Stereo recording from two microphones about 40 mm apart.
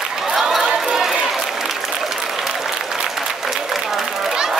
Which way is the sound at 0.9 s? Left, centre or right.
Centre.